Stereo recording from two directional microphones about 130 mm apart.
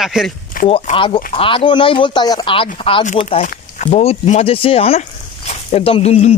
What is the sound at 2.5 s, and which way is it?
Speech, 45° left (ahead or behind).